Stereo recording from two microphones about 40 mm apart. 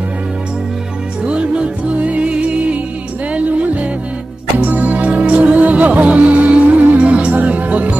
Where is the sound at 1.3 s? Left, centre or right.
Right.